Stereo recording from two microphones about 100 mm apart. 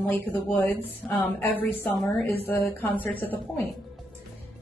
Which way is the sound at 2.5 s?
20° left (ahead or behind).